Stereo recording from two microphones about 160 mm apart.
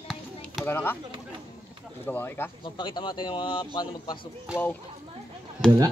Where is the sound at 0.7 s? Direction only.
15° left (ahead or behind).